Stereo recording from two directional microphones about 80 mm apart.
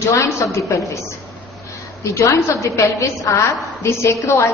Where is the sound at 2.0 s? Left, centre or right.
Left.